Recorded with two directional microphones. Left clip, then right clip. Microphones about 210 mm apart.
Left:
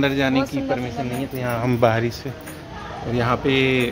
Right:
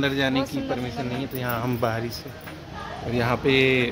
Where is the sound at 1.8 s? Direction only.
30° left (ahead or behind).